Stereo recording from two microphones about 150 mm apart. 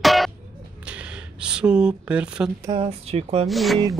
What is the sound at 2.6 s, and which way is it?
Speech, 40° right (ahead or behind).